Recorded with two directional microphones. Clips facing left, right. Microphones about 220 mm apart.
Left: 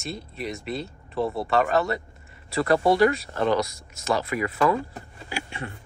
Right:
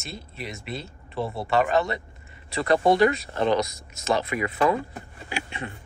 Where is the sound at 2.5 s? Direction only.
20° right (ahead or behind).